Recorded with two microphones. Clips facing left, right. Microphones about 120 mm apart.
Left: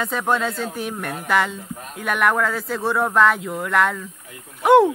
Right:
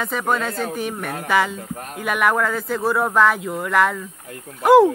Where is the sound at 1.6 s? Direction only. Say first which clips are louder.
Right 3 dB; 60° right (ahead or behind).